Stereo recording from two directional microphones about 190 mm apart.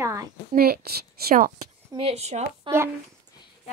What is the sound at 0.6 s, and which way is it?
Speech, 55° right (ahead or behind).